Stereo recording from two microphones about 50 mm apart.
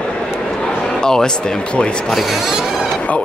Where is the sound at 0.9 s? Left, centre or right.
Centre.